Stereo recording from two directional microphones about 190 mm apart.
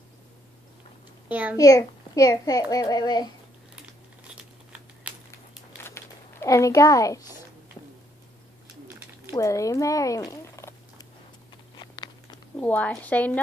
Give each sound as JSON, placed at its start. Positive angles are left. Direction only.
{"t": 1.3, "sound": "a child's voice", "side_deg": -10}
{"t": 1.6, "sound": "a child's voice", "side_deg": 20}
{"t": 5.3, "sound": "crumpling", "side_deg": 15}
{"t": 9.3, "sound": "a sound", "side_deg": 15}
{"t": 12.5, "sound": "speech", "side_deg": 10}